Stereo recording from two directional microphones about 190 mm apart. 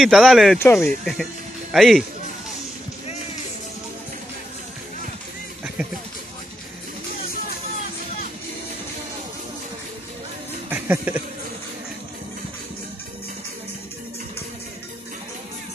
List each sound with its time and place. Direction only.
0.0 s speech: centre (ahead or behind)
0.6 s speech: 10° left (ahead or behind)
1.7 s speech: centre (ahead or behind)
5.8 s speech: 5° right (ahead or behind)
10.7 s a sound: 10° right (ahead or behind)